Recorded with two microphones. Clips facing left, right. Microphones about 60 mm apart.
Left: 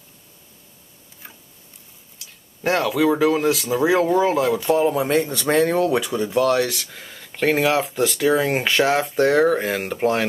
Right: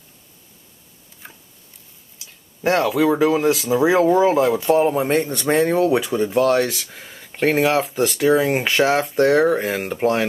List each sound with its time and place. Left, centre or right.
1.2 s tick-tock: centre
2.6 s speech: centre
5.1 s a man's voice: right
5.5 s speech: centre